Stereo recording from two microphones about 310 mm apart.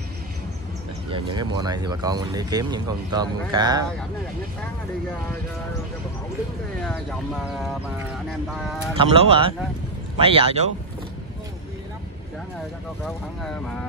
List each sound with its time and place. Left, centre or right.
1.1 s speech: centre
6.8 s speech: centre
8.9 s speech: centre
13.0 s speech: centre